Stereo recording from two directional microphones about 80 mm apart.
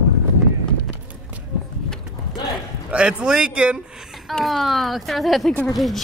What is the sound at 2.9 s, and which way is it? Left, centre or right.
Speech, centre.